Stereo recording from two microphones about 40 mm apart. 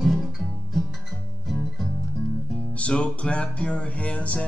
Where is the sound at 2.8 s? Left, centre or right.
Left.